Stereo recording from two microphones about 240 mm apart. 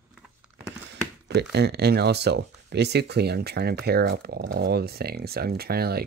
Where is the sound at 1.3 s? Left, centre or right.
Right.